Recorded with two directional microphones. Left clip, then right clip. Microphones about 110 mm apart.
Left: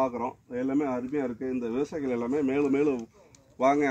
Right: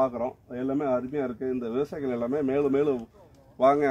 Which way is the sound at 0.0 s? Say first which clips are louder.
Right 2 dB; 20° right (ahead or behind).